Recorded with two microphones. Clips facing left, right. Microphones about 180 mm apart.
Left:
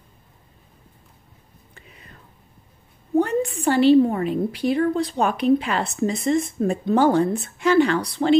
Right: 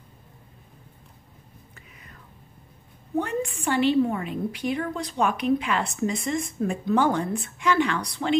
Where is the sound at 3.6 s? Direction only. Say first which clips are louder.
Left 7 dB; 35° left (ahead or behind).